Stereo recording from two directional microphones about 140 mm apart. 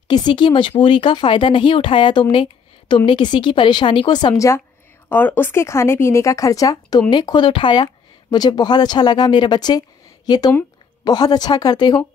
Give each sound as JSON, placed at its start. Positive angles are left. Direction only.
{"t": 0.1, "sound": "speech", "side_deg": 35}
{"t": 5.1, "sound": "speech", "side_deg": 15}